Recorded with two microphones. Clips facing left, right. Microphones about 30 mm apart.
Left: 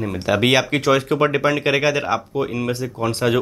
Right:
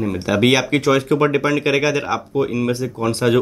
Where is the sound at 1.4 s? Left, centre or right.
Left.